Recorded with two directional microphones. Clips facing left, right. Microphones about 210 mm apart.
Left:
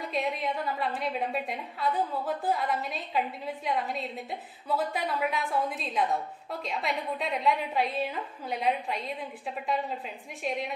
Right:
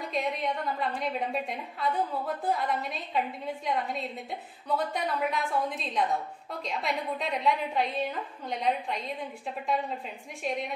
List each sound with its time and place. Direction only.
0.0 s a woman's voice: centre (ahead or behind)
10.4 s a woman's voice: centre (ahead or behind)